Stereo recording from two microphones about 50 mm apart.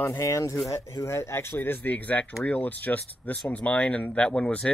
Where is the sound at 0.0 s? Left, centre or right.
Left.